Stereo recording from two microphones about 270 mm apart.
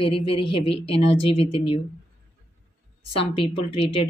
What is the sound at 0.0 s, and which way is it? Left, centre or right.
Speech, centre.